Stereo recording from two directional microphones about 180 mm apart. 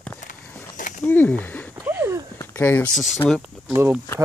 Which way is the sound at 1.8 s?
15° right (ahead or behind).